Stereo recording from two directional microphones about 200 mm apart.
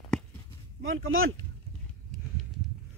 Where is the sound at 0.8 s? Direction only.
90° right.